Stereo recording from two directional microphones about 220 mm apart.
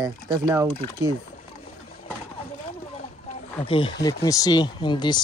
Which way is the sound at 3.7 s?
25° left (ahead or behind).